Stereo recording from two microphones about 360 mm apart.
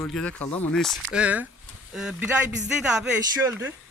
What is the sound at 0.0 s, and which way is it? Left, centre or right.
Speech, centre.